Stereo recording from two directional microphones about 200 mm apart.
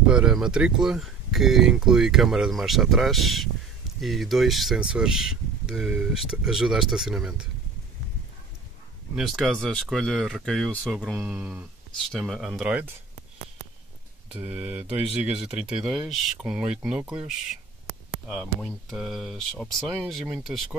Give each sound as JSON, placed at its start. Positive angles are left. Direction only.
{"t": 0.0, "sound": "speech", "side_deg": -5}
{"t": 9.1, "sound": "speech", "side_deg": 0}
{"t": 14.3, "sound": "speech", "side_deg": -5}
{"t": 18.6, "sound": "speech", "side_deg": 0}